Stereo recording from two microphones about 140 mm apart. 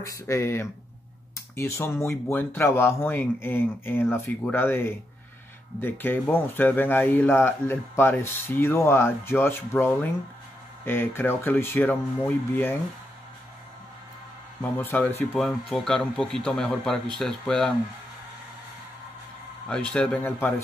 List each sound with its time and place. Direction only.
0.0 s speech: 20° left (ahead or behind)
14.6 s speech: 15° left (ahead or behind)
15.3 s speech: centre (ahead or behind)
19.7 s speech: 5° left (ahead or behind)